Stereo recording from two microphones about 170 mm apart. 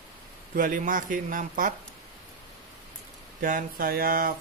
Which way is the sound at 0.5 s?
50° right (ahead or behind).